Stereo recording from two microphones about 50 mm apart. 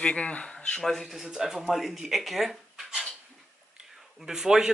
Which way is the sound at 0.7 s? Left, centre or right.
Centre.